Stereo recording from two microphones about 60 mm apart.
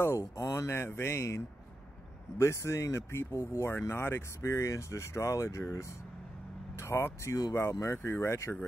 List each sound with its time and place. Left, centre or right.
0.4 s a sound: left
0.7 s speech: left
3.8 s speech: left
6.8 s speech: left